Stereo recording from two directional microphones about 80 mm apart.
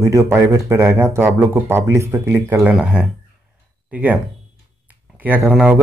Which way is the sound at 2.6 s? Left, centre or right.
Centre.